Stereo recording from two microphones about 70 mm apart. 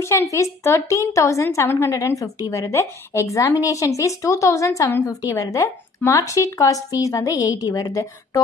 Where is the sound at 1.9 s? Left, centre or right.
Left.